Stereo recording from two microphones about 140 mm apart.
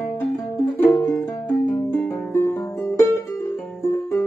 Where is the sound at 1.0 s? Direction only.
15° left (ahead or behind).